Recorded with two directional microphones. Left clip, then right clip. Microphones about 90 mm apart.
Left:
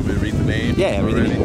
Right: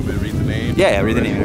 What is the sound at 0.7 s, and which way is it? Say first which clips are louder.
Speech: right 6 dB; 20° right (ahead or behind).